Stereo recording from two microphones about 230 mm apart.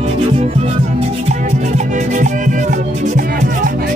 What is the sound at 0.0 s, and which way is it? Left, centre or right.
Music, right.